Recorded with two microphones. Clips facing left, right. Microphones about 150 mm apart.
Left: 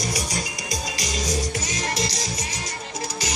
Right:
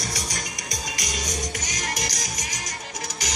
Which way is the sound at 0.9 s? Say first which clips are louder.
Left 5 dB; 30° left (ahead or behind).